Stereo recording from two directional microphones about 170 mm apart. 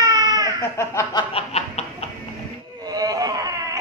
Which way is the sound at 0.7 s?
15° left (ahead or behind).